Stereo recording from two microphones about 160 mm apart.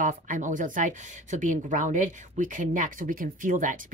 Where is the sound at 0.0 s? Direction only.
55° right (ahead or behind).